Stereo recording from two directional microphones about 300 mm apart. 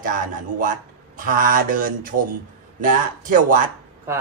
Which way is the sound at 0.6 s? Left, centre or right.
Right.